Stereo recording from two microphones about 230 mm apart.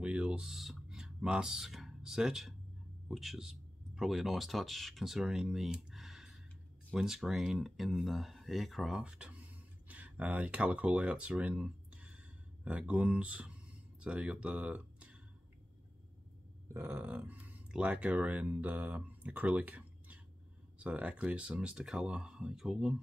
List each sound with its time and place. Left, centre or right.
0.0 s speech: centre
16.7 s speech: centre